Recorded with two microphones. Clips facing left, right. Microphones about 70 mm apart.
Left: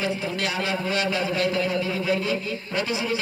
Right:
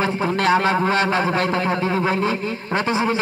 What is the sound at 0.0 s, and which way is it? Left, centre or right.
A man's voice, right.